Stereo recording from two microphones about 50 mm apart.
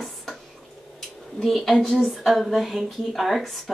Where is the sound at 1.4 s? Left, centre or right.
Centre.